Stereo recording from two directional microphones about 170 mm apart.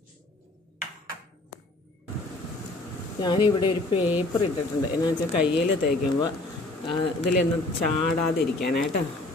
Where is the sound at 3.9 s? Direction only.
10° right (ahead or behind).